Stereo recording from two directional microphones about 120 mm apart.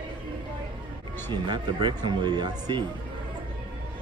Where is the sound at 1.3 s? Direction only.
40° right (ahead or behind).